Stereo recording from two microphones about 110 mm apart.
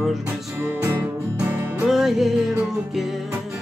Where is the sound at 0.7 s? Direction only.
20° right (ahead or behind).